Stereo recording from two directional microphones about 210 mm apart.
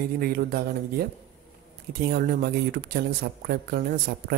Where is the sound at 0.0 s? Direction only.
45° right (ahead or behind).